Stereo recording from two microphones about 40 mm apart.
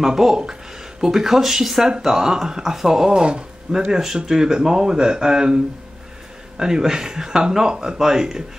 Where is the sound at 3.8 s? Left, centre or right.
Centre.